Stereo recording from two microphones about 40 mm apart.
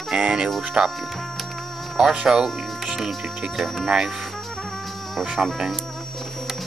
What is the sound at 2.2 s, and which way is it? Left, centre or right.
Speech, centre.